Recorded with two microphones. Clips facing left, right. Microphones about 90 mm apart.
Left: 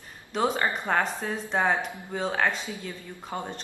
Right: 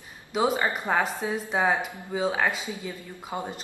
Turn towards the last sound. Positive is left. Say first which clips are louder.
# right 1 dB
turn(degrees=-10)  # may be behind; listen again after turning